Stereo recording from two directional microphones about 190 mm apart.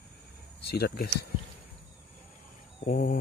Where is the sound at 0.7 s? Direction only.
60° left (ahead or behind).